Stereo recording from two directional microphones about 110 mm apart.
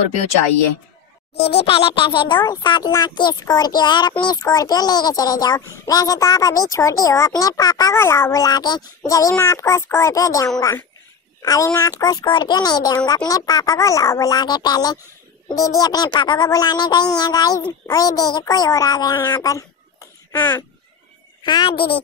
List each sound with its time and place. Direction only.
1.5 s a child's voice: 60° left (ahead or behind); by 7.9 s 35° left (ahead or behind)
7.9 s a child's voice: 25° left (ahead or behind)
19.2 s speech: 25° left (ahead or behind)
21.4 s speech: 40° left (ahead or behind)